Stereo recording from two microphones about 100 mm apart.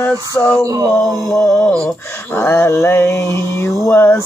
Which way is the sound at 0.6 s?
35° right (ahead or behind).